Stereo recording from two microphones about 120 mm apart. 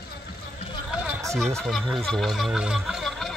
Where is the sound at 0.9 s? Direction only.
10° right (ahead or behind).